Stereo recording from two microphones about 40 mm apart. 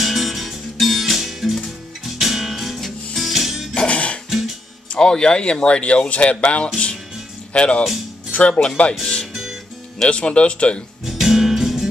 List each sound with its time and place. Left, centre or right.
0.0 s music: centre
3.7 s music: left
4.3 s music: centre
4.9 s speech: left
9.3 s guitar: centre
10.0 s speech: left
11.1 s music: centre